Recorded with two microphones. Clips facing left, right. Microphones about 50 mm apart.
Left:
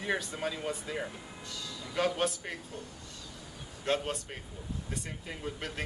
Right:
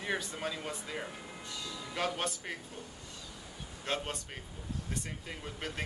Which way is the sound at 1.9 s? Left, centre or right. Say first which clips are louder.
Left 5 dB; centre.